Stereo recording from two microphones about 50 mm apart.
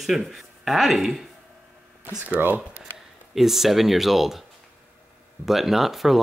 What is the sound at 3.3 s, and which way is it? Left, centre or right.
Speech, centre.